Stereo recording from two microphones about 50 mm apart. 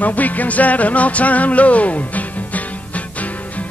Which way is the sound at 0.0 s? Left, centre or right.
Left.